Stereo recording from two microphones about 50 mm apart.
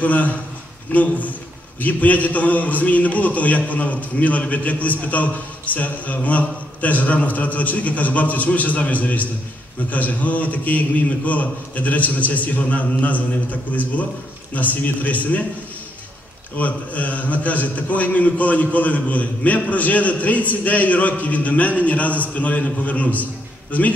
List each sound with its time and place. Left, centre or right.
0.0 s a man's voice: left
16.5 s a man's voice: left